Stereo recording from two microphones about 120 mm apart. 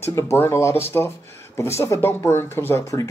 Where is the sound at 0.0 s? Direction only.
25° left (ahead or behind).